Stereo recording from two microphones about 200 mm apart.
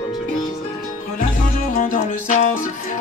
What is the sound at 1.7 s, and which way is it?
Music, 40° left (ahead or behind).